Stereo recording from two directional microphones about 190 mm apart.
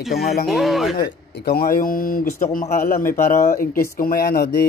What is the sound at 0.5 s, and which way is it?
Speech, centre (ahead or behind).